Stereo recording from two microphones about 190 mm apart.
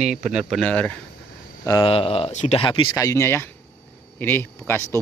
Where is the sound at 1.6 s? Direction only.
20° left (ahead or behind).